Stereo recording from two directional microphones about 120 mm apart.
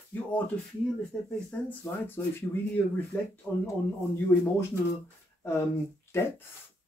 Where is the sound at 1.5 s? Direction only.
15° left (ahead or behind).